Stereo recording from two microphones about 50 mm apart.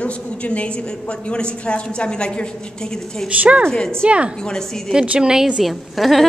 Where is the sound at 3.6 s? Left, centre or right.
Centre.